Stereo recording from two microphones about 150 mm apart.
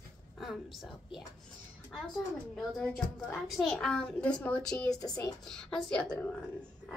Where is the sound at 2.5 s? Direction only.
Centre (ahead or behind).